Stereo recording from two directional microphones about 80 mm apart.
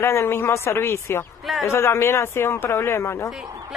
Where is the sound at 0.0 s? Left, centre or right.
Left.